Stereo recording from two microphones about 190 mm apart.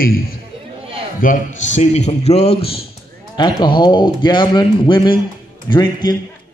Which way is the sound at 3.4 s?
25° left (ahead or behind).